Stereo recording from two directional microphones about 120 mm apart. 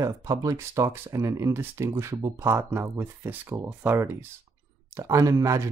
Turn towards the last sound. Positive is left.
turn(degrees=-25)  # may be behind; listen again after turning